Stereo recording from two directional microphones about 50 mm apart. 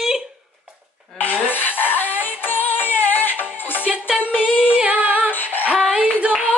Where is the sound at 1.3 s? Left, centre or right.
Right.